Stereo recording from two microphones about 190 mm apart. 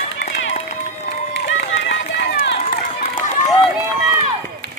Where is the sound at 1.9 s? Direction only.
70° left (ahead or behind).